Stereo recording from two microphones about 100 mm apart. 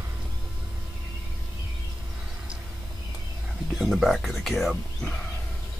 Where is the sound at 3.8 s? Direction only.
Centre (ahead or behind).